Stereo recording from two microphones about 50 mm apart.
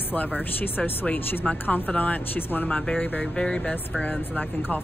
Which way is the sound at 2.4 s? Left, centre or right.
Left.